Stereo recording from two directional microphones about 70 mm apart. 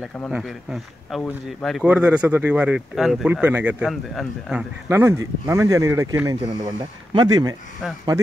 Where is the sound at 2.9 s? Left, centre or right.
Centre.